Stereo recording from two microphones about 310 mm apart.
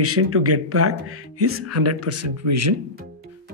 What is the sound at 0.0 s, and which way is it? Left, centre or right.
Speech, right.